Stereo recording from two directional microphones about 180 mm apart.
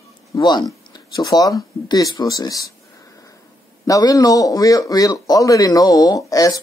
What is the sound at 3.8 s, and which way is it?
A man's voice, 20° left (ahead or behind).